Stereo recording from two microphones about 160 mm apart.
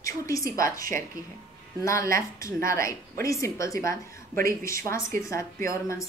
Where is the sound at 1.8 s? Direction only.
20° left (ahead or behind).